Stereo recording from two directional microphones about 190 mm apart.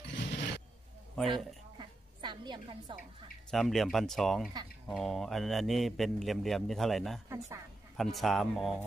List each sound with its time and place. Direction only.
0.1 s a sound: 65° left (ahead or behind)
1.1 s a man's voice: centre (ahead or behind)
1.8 s a sound: 25° right (ahead or behind)
3.4 s a man's voice: centre (ahead or behind)
7.2 s a woman's voice: 15° right (ahead or behind)
8.0 s a man's voice: centre (ahead or behind)